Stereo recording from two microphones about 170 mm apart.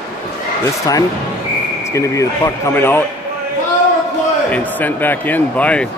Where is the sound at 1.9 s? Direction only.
15° left (ahead or behind).